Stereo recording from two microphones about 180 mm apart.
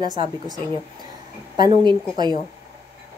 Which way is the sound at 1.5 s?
25° right (ahead or behind).